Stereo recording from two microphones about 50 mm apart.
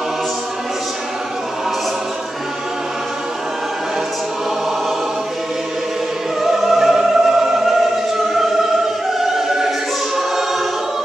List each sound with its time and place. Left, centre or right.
6.4 s music: centre
9.2 s choir: centre